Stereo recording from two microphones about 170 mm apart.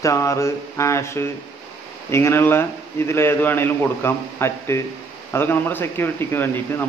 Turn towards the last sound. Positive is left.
turn(degrees=10)  # may be behind; listen again after turning